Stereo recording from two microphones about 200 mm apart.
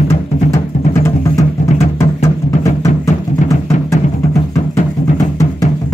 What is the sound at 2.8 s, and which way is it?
Music, 15° left (ahead or behind).